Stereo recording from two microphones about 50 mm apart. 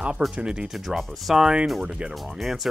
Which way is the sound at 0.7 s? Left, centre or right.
Centre.